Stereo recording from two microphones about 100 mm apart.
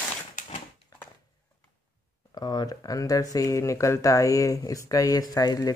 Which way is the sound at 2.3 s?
40° left (ahead or behind).